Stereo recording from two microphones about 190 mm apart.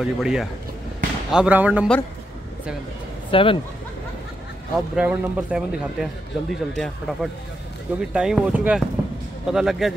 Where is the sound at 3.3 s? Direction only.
30° left (ahead or behind).